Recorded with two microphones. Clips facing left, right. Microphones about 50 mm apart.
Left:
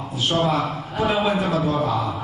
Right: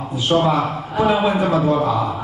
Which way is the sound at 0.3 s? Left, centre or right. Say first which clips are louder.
Right 5 dB; centre.